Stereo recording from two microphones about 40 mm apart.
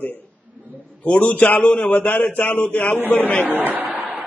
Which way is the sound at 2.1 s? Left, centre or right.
Left.